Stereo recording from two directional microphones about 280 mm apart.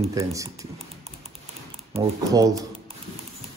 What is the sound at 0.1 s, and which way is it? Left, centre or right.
Speech, centre.